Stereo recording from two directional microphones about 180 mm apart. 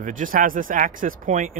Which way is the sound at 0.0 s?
50° right (ahead or behind).